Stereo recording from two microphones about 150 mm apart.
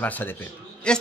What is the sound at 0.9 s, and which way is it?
Speech, 5° left (ahead or behind).